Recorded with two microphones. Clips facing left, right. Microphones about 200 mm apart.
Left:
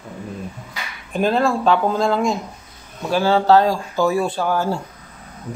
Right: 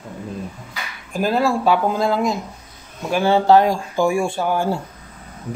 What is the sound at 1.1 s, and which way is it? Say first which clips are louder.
Speech: left 1 dB; 5° right (ahead or behind).